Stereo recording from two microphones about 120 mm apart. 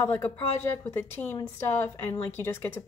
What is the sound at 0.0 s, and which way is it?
A woman's voice, 20° left (ahead or behind).